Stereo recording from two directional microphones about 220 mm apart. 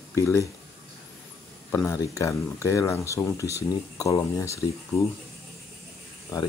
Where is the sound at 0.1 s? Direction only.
10° left (ahead or behind).